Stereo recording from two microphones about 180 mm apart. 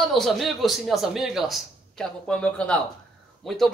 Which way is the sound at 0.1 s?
Centre (ahead or behind).